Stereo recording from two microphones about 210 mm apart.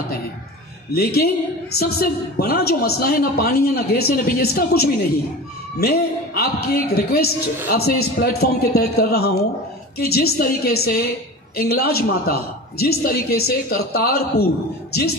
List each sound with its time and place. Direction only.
0.9 s a woman's voice: 45° left (ahead or behind)